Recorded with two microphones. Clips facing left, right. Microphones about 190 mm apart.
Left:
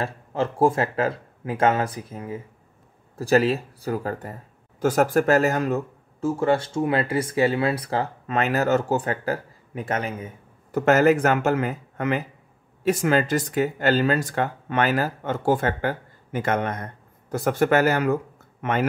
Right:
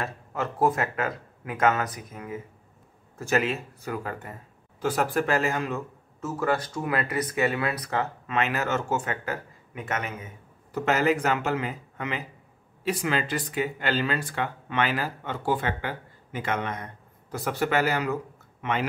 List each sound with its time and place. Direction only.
0.0 s speech: 30° left (ahead or behind)
6.2 s speech: 25° left (ahead or behind)
10.7 s speech: 50° left (ahead or behind)